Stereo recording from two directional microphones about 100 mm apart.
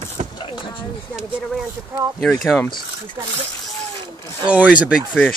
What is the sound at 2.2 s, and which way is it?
Speech, 5° left (ahead or behind).